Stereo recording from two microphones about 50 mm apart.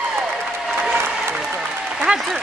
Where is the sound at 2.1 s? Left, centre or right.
Right.